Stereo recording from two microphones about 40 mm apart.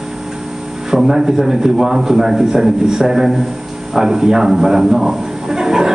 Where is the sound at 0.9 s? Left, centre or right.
Centre.